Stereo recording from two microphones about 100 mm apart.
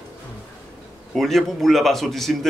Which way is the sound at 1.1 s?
Centre (ahead or behind).